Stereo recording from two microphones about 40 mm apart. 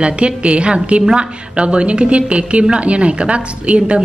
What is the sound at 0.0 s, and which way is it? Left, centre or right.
A woman's voice, right.